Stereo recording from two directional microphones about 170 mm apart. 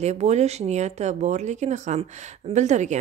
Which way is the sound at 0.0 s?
40° right (ahead or behind).